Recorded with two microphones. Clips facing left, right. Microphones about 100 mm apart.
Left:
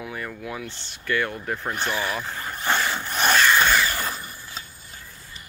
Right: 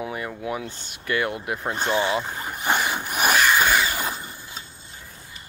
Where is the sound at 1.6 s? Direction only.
20° right (ahead or behind).